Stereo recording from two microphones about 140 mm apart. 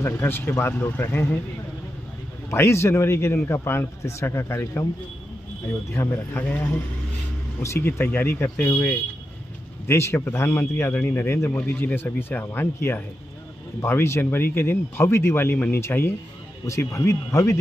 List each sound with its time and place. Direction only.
0.0 s a man's voice: 15° left (ahead or behind)
2.5 s a man's voice: 20° left (ahead or behind)
5.9 s a man's voice: 15° left (ahead or behind)